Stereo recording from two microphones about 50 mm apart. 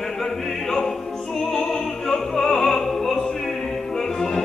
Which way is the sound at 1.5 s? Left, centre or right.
Centre.